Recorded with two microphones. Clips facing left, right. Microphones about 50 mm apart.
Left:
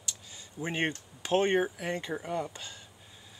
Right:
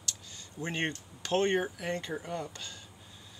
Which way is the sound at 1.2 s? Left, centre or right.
Centre.